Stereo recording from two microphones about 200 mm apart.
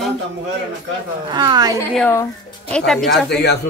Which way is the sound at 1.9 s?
10° left (ahead or behind).